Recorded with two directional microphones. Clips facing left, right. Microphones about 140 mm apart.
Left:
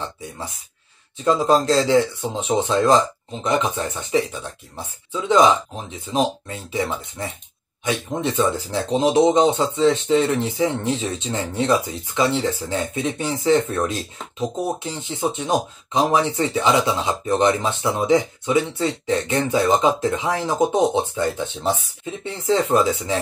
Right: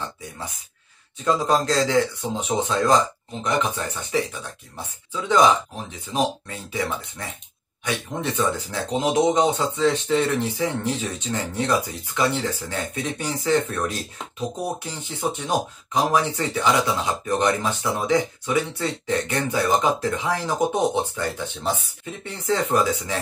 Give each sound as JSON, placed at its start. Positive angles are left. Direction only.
{"t": 1.2, "sound": "speech", "side_deg": 20}
{"t": 5.3, "sound": "speech", "side_deg": 25}